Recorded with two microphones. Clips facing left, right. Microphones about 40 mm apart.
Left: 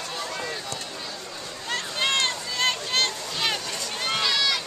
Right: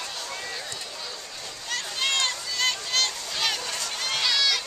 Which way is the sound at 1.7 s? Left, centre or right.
Left.